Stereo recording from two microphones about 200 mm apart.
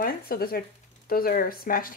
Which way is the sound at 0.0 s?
50° left (ahead or behind).